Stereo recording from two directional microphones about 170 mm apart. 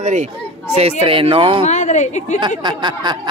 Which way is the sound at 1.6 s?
45° left (ahead or behind).